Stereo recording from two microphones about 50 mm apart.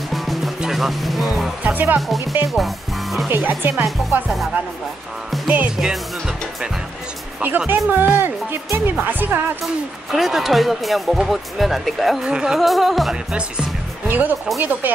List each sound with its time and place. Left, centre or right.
0.1 s music: centre
0.6 s speech: centre
1.6 s speech: right
2.4 s speech: centre
3.3 s speech: right
5.8 s speech: centre
7.4 s speech: right
10.1 s speech: centre
12.3 s speech: centre
12.5 s speech: centre
13.1 s speech: centre
14.0 s speech: right